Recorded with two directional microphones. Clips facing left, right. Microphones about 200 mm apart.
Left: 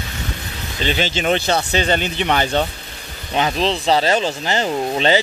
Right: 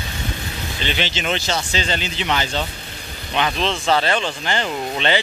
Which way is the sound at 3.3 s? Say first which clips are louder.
Left 3 dB; 35° left (ahead or behind).